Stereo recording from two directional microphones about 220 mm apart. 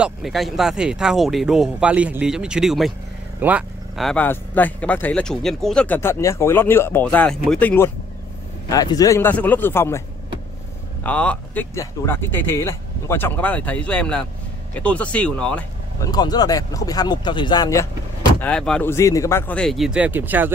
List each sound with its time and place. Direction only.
0.0 s speech: centre (ahead or behind)
11.1 s speech: 5° left (ahead or behind)
16.1 s speech: 20° left (ahead or behind)
18.4 s speech: 5° left (ahead or behind)